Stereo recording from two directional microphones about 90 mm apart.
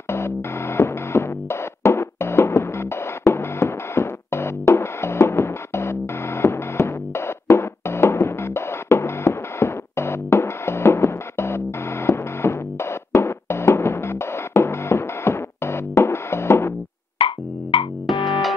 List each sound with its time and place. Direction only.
0.1 s music: 30° left (ahead or behind)
17.2 s music: 80° left